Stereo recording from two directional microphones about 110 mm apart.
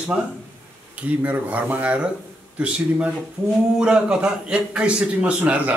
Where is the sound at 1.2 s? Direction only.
15° right (ahead or behind).